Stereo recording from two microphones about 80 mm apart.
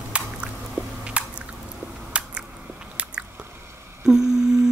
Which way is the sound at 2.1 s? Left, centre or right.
Centre.